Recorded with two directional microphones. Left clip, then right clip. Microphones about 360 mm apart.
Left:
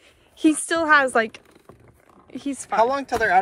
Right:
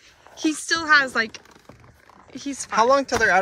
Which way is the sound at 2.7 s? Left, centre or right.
Centre.